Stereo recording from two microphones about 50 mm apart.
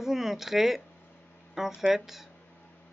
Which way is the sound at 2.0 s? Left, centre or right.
Centre.